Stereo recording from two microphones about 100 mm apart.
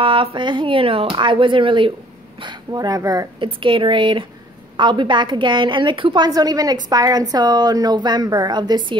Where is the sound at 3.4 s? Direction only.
60° right (ahead or behind).